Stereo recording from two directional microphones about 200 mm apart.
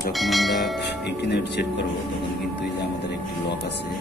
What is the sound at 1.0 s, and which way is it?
Speech, 60° left (ahead or behind).